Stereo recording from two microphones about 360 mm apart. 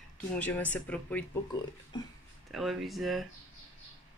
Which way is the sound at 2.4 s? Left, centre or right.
Centre.